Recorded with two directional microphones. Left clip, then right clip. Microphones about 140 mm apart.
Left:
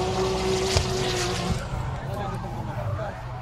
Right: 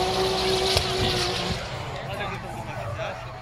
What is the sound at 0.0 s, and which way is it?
Vehicle, 10° left (ahead or behind).